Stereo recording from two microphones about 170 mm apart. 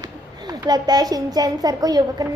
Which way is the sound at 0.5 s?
25° right (ahead or behind).